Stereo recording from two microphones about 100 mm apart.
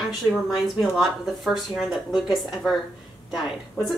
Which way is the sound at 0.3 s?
Centre (ahead or behind).